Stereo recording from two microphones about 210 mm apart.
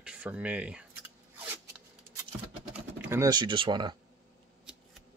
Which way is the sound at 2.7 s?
10° right (ahead or behind).